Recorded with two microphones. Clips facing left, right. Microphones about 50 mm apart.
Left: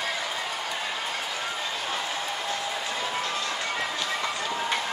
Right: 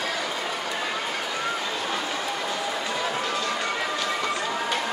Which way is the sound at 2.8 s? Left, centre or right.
Right.